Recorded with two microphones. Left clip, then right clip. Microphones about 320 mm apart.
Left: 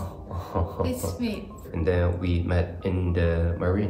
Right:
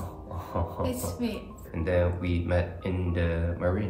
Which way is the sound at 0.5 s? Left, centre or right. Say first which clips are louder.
Left 3 dB; centre.